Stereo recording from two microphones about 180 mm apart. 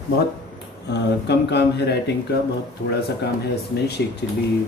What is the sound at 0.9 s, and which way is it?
Speech, 70° left (ahead or behind).